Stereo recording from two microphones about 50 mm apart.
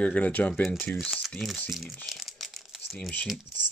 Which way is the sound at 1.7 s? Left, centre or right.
Centre.